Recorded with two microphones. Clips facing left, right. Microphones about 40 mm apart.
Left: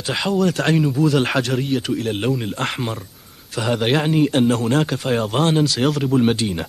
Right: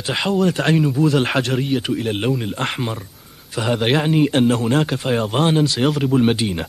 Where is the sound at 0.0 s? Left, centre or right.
Centre.